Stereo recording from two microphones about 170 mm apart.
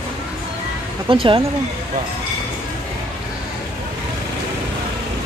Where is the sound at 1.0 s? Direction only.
30° right (ahead or behind).